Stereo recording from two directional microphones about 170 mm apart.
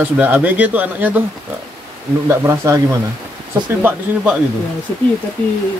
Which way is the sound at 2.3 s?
20° right (ahead or behind).